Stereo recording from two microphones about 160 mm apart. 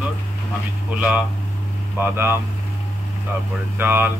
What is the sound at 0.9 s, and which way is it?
Speech, 5° right (ahead or behind).